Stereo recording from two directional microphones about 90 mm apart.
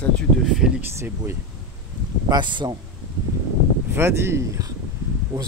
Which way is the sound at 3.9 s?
30° right (ahead or behind).